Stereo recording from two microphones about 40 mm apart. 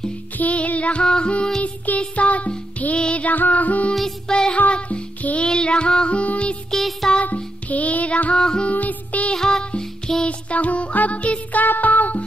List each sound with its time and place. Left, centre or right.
0.4 s music: left
1.0 s music: centre
1.6 s music: left
3.3 s music: left
4.3 s music: left
6.7 s music: centre
7.3 s music: left
8.4 s music: centre
8.6 s music: left
9.3 s music: centre
10.2 s music: left
11.6 s music: left